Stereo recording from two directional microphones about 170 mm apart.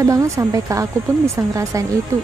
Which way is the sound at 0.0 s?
20° right (ahead or behind).